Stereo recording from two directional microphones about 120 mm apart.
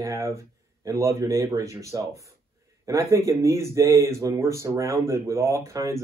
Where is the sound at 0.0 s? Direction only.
25° right (ahead or behind).